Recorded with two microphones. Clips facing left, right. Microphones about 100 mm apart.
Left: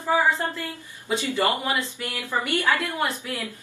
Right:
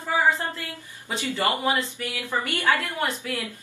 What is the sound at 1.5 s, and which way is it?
Speech, 20° right (ahead or behind).